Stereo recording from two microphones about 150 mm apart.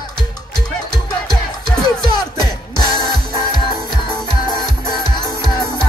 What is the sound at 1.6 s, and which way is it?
Music, 30° left (ahead or behind).